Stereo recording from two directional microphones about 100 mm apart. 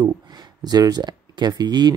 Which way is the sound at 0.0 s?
45° right (ahead or behind).